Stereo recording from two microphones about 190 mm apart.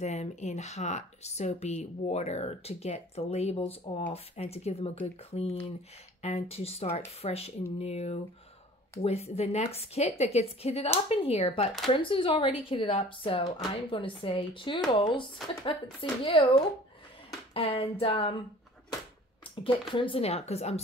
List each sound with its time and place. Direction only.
0.0 s speech: 35° left (ahead or behind)
19.5 s speech: 25° left (ahead or behind)